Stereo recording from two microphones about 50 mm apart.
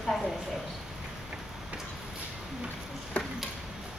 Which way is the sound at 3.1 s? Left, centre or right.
Left.